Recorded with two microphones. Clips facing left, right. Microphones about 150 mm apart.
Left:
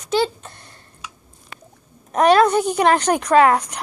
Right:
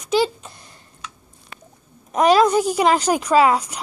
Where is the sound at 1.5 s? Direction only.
70° left (ahead or behind).